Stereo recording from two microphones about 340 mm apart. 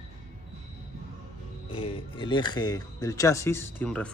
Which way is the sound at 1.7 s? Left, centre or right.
Centre.